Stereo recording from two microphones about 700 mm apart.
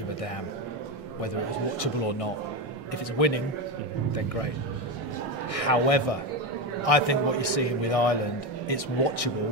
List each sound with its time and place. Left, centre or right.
1.8 s a man's voice: left
5.5 s a man's voice: left